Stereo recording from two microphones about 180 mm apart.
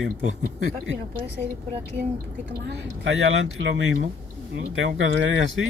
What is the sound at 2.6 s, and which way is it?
Speech, 90° right.